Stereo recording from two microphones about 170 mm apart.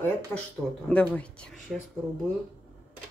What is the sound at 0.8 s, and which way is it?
Speech, 5° left (ahead or behind).